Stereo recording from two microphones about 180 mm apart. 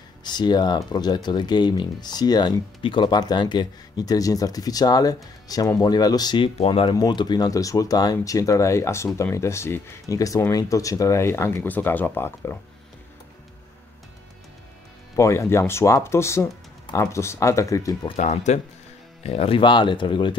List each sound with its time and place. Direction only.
0.2 s speech: 25° left (ahead or behind)
15.1 s speech: 15° left (ahead or behind)
18.1 s speech: 40° left (ahead or behind)